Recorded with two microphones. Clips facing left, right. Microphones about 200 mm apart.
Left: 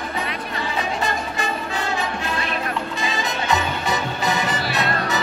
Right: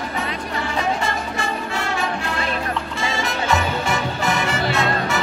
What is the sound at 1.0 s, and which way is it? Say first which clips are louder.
Music: even; 20° left (ahead or behind).